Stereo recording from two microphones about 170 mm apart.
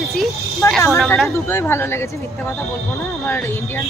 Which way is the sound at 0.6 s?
15° left (ahead or behind).